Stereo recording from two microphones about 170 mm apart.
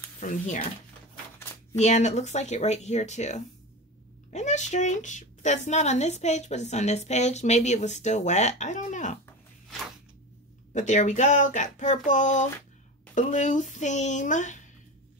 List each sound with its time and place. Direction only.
0.2 s a woman's voice: 45° left (ahead or behind)
1.8 s a woman's voice: 45° left (ahead or behind)
10.7 s a woman's voice: 45° left (ahead or behind)